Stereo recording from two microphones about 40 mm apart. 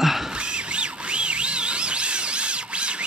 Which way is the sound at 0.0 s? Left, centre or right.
Centre.